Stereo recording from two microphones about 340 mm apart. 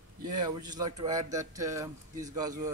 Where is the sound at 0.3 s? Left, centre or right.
Centre.